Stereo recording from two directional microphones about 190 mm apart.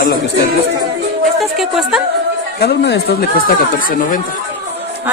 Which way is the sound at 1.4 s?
Centre (ahead or behind).